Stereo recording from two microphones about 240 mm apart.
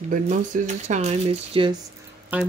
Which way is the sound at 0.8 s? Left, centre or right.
Right.